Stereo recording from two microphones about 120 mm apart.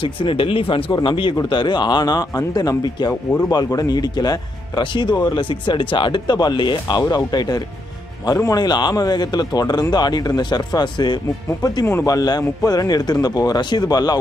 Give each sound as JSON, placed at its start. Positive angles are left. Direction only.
{"t": 0.0, "sound": "speech", "side_deg": 45}
{"t": 3.1, "sound": "speech", "side_deg": 20}
{"t": 3.4, "sound": "speech", "side_deg": 30}